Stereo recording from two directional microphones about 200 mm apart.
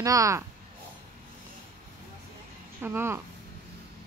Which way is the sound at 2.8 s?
10° right (ahead or behind).